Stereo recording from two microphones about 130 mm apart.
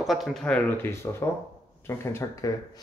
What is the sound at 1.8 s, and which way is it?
Speech, 20° left (ahead or behind).